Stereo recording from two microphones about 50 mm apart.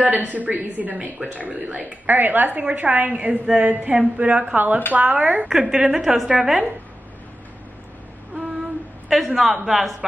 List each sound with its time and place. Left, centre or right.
0.0 s a woman's voice: right
2.0 s a woman's voice: right; by 6.7 s centre
9.1 s a woman's voice: centre